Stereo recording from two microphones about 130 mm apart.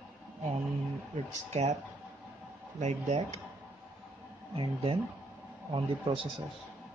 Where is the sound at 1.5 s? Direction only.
60° right (ahead or behind).